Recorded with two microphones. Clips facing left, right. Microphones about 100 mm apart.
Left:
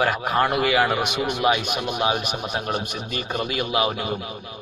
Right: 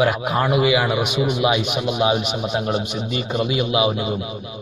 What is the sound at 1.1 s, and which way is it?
Speech, 55° left (ahead or behind).